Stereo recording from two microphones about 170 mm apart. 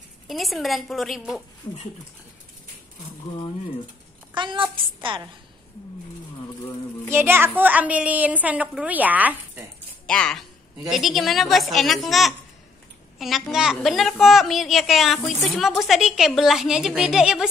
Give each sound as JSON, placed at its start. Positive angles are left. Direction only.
{"t": 0.3, "sound": "a woman's voice", "side_deg": 0}
{"t": 1.6, "sound": "speech", "side_deg": 25}
{"t": 4.3, "sound": "a woman's voice", "side_deg": -25}
{"t": 7.1, "sound": "a woman's voice", "side_deg": -15}
{"t": 10.0, "sound": "a woman's voice", "side_deg": 5}